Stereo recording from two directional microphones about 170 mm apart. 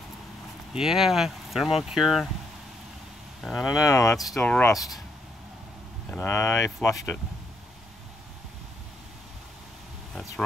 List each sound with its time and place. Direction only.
0.7 s speech: centre (ahead or behind)
3.6 s speech: 20° left (ahead or behind)
4.2 s speech: 5° left (ahead or behind)
6.0 s speech: 10° left (ahead or behind)